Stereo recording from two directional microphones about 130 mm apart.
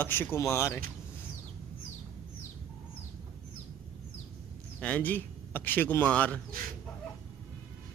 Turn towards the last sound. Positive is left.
turn(degrees=10)  # may be behind; listen again after turning